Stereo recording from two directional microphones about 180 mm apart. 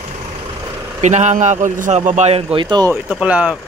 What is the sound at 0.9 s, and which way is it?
A man's voice, 40° right (ahead or behind).